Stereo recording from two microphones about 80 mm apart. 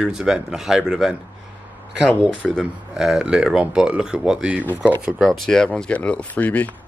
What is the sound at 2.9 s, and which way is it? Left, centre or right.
Speech, centre.